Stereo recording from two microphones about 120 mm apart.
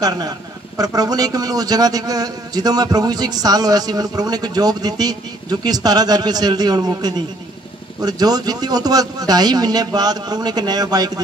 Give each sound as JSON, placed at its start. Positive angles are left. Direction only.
{"t": 0.7, "sound": "a man's voice", "side_deg": -30}